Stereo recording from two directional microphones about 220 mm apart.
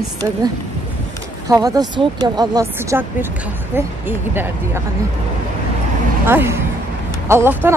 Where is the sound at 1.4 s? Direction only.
15° right (ahead or behind).